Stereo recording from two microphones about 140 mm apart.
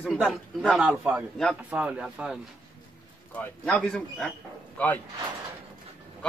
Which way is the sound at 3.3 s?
5° left (ahead or behind).